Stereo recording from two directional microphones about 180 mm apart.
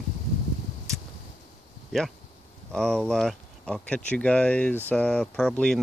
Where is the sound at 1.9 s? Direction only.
Centre (ahead or behind).